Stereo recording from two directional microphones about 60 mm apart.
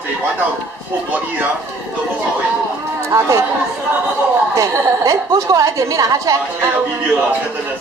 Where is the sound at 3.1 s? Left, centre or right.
Right.